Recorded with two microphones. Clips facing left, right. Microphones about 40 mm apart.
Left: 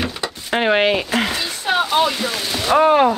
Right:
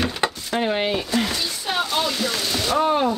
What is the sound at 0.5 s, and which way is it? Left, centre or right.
Speech, left.